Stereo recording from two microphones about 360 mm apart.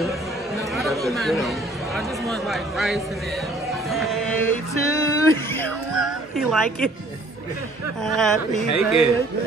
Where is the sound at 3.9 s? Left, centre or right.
Centre.